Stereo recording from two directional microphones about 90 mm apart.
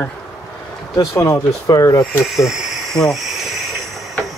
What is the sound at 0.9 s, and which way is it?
Speech, 40° left (ahead or behind).